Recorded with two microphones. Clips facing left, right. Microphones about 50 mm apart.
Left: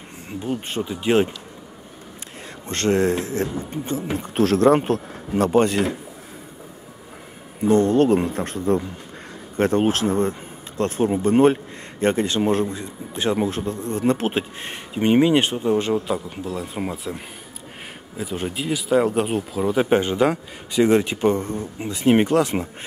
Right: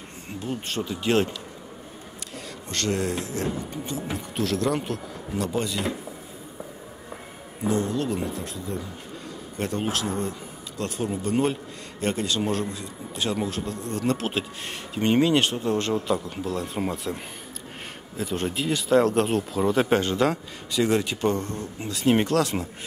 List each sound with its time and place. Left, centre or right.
0.4 s a man's voice: centre
2.7 s speech: left
7.6 s a man's voice: left; by 19.9 s centre
19.9 s a man's voice: centre